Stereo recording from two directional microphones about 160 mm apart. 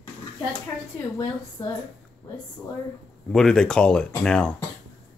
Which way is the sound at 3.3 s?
5° left (ahead or behind).